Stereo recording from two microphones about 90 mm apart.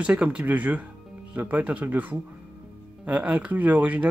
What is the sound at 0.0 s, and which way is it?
Speech, 15° right (ahead or behind).